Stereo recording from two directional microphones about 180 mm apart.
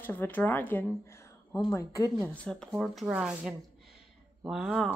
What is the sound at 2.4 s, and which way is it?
Speech, centre (ahead or behind).